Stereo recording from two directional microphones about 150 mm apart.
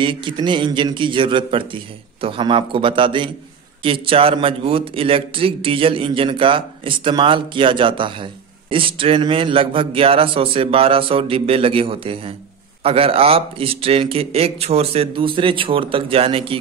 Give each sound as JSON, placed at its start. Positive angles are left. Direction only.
{"t": 0.0, "sound": "a man's voice", "side_deg": -35}